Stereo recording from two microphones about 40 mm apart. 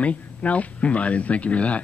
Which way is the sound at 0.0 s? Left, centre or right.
Left.